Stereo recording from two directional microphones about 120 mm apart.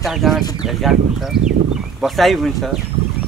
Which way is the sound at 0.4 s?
35° left (ahead or behind).